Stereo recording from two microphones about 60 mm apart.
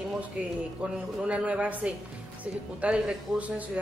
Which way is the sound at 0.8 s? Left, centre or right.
Right.